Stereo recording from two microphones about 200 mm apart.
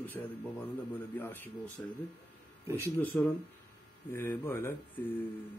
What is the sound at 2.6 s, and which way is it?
Speech, 10° right (ahead or behind).